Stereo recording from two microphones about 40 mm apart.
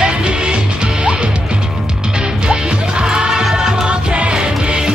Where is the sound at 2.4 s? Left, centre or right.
Right.